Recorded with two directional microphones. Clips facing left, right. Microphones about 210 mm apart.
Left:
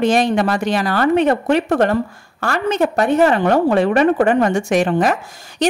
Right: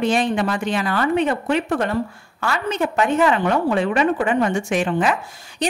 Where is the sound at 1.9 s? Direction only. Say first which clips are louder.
Left 4 dB; 45° left (ahead or behind).